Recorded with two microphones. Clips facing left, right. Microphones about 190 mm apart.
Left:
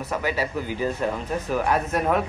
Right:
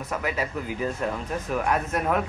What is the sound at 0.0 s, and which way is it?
Speech, 35° left (ahead or behind).